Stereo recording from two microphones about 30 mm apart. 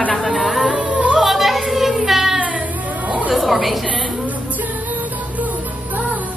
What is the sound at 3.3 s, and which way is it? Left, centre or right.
Chatter, centre.